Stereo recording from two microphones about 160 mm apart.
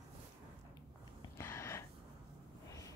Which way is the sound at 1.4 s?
15° left (ahead or behind).